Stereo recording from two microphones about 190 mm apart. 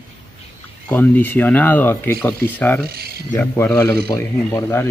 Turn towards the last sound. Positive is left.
turn(degrees=15)  # may be behind; listen again after turning